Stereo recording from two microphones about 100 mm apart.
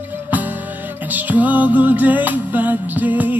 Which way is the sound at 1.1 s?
15° right (ahead or behind).